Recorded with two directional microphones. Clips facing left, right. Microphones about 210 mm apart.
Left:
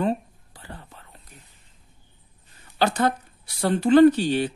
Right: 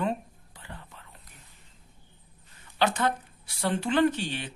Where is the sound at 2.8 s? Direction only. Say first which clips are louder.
Left 4 dB; 35° left (ahead or behind).